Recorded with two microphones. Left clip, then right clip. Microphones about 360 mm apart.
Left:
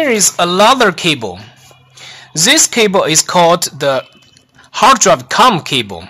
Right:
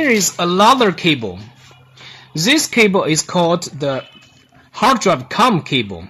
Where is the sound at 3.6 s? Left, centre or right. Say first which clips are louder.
Left 7 dB; left.